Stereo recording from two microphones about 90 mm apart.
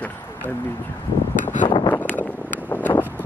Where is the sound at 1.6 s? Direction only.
65° left (ahead or behind).